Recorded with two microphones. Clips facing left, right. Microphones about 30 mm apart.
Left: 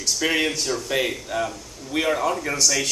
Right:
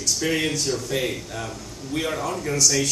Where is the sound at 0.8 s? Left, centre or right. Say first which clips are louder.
Left 2 dB; left.